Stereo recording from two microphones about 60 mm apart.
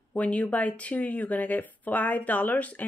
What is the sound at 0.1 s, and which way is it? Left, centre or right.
Speech, left.